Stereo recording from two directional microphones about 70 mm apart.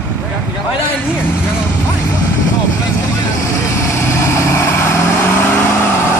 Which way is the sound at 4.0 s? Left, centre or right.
Left.